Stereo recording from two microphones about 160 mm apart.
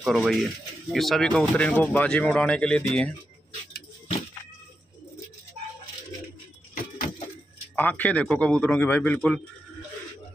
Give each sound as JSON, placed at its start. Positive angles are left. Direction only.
{"t": 0.0, "sound": "speech", "side_deg": 0}
{"t": 6.7, "sound": "a sound", "side_deg": 60}
{"t": 7.7, "sound": "speech", "side_deg": 10}